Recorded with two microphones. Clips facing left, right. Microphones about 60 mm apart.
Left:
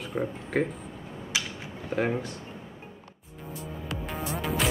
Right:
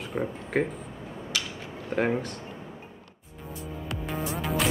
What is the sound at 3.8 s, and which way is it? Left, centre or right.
Music, centre.